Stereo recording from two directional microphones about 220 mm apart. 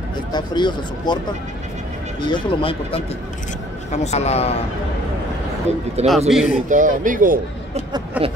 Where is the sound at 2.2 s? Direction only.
20° left (ahead or behind).